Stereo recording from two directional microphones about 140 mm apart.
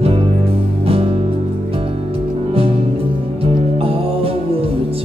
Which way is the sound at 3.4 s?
45° right (ahead or behind).